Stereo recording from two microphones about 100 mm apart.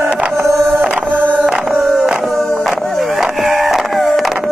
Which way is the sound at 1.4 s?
Centre (ahead or behind).